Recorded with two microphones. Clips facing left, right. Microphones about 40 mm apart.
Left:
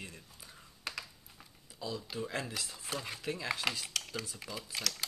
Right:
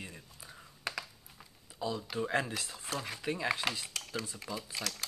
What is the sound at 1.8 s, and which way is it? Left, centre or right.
Speech, right.